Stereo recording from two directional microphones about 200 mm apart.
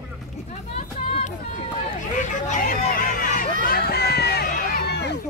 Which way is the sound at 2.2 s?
40° left (ahead or behind).